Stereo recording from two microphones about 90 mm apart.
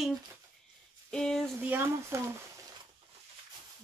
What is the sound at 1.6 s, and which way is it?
Speech, 25° right (ahead or behind).